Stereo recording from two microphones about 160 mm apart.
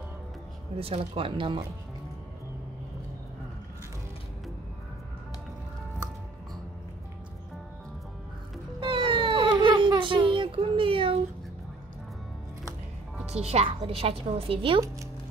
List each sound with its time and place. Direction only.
0.7 s a woman's voice: 35° right (ahead or behind)
8.7 s baby cry: 30° right (ahead or behind)
13.3 s a woman's voice: 40° right (ahead or behind)